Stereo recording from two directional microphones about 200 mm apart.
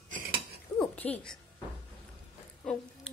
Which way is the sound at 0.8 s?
10° left (ahead or behind).